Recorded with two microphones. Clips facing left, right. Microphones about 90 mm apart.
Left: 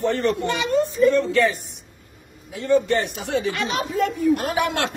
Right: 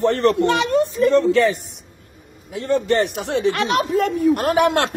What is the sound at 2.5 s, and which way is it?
Speech, 65° right (ahead or behind).